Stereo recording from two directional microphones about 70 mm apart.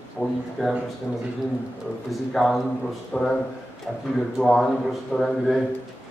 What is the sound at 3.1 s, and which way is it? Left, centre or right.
Speech, centre.